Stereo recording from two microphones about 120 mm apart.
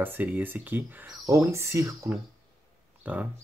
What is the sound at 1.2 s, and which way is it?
Speech, 25° right (ahead or behind).